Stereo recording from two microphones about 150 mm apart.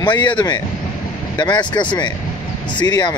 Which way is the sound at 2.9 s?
30° left (ahead or behind).